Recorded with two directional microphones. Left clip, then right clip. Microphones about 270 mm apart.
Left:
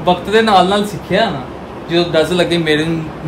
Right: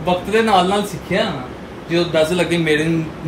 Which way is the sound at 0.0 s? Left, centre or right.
Centre.